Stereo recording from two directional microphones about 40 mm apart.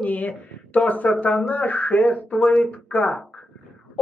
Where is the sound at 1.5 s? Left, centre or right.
Left.